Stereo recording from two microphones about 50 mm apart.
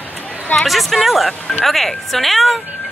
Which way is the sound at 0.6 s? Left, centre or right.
Centre.